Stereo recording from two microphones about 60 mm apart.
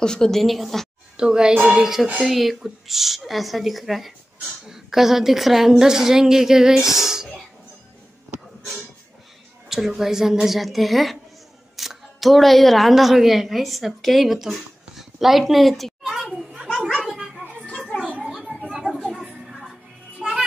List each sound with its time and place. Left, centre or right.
0.0 s a woman's voice: centre
1.1 s a child's voice: centre
9.7 s a woman's voice: centre
16.9 s cat: centre
17.6 s children playing: centre
17.9 s a sound: centre
18.3 s a sound: centre
19.2 s music: centre